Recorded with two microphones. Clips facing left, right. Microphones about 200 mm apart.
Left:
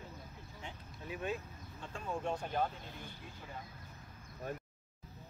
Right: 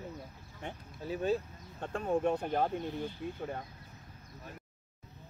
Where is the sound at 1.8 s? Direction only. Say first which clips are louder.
Right 9 dB; 60° right (ahead or behind).